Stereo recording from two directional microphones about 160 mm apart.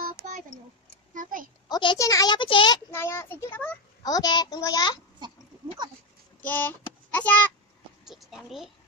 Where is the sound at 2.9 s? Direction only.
15° left (ahead or behind).